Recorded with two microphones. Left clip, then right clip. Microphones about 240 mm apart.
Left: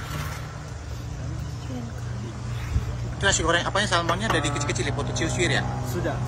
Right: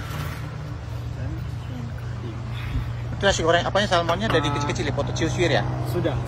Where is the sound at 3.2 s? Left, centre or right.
Centre.